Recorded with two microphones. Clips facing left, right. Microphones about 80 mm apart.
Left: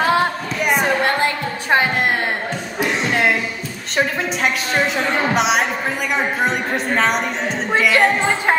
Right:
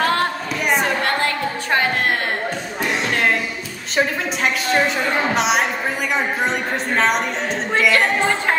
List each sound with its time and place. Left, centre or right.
0.0 s a sound: centre
2.8 s music: centre
3.9 s a woman's voice: centre